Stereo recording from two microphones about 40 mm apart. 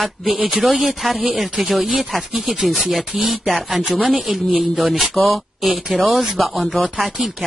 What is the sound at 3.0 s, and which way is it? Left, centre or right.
Speech, right.